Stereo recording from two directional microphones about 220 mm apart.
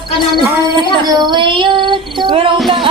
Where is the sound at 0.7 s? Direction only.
20° right (ahead or behind).